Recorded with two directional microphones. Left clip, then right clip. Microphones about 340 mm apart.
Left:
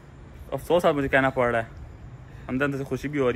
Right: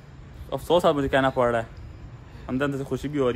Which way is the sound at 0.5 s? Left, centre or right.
Centre.